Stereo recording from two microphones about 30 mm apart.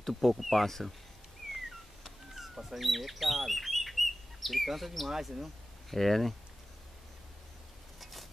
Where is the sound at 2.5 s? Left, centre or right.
Centre.